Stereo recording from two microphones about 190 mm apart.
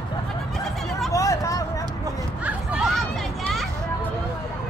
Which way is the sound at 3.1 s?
Centre (ahead or behind).